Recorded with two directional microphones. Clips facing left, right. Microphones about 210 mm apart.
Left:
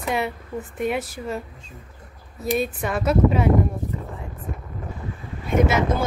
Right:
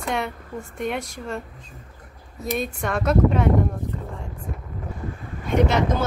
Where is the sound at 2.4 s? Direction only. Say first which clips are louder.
Left 2 dB; centre (ahead or behind).